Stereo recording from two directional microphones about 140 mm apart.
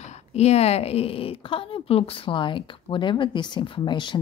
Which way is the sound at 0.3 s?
50° left (ahead or behind).